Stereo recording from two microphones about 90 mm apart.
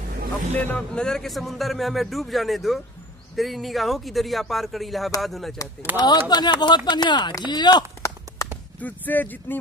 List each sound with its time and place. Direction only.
0.6 s speech: 15° left (ahead or behind)
5.9 s speech: 50° left (ahead or behind)
8.3 s a sound: 40° right (ahead or behind)
8.8 s speech: 20° left (ahead or behind)